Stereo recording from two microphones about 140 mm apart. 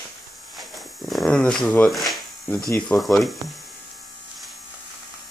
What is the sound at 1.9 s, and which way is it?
Speech, centre (ahead or behind).